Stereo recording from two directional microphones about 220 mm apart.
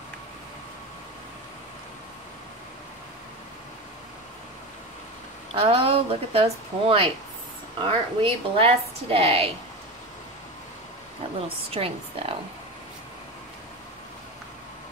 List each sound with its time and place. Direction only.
5.5 s a woman's voice: 25° right (ahead or behind)
11.4 s a woman's voice: 25° right (ahead or behind)